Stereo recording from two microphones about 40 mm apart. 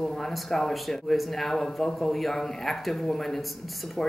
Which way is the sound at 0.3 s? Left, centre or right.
Centre.